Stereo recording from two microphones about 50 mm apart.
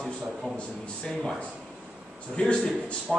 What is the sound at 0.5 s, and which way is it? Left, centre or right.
Speech, centre.